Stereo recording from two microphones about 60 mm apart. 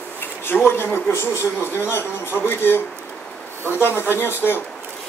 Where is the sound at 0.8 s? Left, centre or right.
Left.